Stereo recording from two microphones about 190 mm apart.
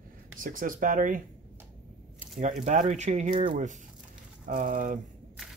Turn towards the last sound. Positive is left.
turn(degrees=-45)  # may be behind; listen again after turning